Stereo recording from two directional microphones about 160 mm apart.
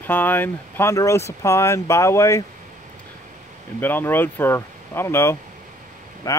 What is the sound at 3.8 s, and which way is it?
Speech, 10° left (ahead or behind).